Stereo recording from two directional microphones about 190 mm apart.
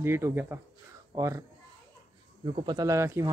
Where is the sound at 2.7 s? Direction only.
20° right (ahead or behind).